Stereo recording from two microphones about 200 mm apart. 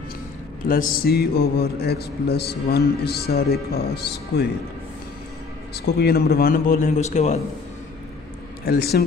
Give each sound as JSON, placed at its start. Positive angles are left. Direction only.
{"t": 0.7, "sound": "a man's voice", "side_deg": 45}
{"t": 5.9, "sound": "a man's voice", "side_deg": 50}
{"t": 8.6, "sound": "a man's voice", "side_deg": 55}